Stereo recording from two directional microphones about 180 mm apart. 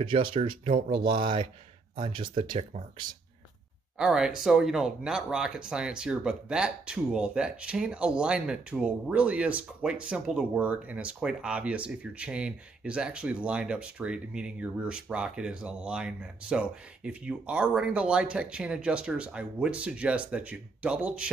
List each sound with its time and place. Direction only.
0.0 s speech: 30° right (ahead or behind)
4.0 s speech: 5° right (ahead or behind)